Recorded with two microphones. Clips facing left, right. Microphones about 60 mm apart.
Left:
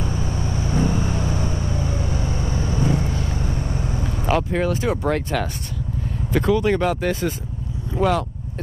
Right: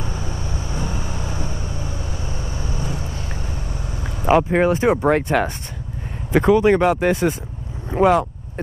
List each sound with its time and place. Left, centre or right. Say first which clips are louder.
0.4 s vehicle: left 6 dB; left
4.0 s speech: right 6 dB; right